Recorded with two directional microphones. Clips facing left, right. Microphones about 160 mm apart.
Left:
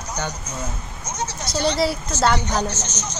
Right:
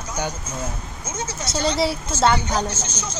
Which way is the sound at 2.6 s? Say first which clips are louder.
Left 1 dB; 30° right (ahead or behind).